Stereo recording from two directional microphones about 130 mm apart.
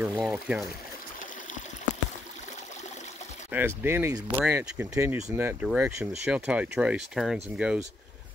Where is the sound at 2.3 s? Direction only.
65° left (ahead or behind).